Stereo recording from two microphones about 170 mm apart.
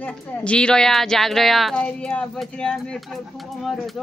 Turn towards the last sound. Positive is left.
turn(degrees=0)  # may be behind; listen again after turning